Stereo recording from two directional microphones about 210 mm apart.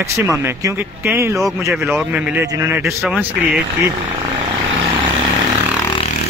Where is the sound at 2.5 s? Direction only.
15° right (ahead or behind).